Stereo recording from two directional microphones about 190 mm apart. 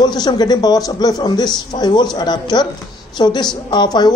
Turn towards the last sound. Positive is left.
turn(degrees=20)  # may be behind; listen again after turning